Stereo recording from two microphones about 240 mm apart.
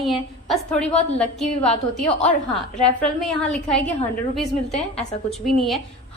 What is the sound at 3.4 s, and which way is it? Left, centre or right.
A woman's voice, centre.